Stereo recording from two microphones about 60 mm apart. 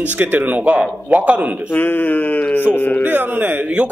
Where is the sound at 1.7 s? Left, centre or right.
Left.